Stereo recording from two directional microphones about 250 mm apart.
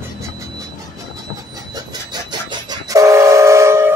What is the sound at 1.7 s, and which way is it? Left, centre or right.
Train, centre.